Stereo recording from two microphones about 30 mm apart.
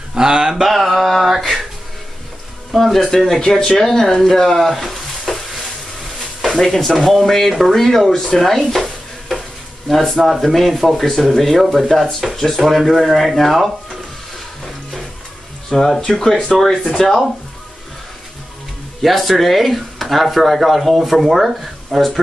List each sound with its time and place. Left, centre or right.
0.1 s a sound: right
0.6 s speech: centre
2.7 s speech: centre
3.2 s speech: centre
4.8 s sizzle: centre
6.4 s speech: centre
8.4 s speech: centre
9.8 s speech: centre
15.7 s speech: centre
18.9 s speech: centre